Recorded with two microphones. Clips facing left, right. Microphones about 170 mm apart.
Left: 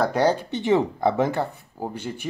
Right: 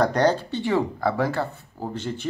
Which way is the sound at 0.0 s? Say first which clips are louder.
Right 1 dB; 10° left (ahead or behind).